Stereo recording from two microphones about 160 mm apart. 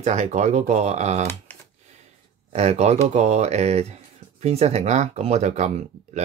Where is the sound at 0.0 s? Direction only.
50° right (ahead or behind).